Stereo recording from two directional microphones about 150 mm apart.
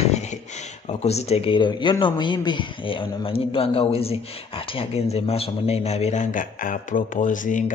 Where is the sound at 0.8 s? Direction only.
45° left (ahead or behind).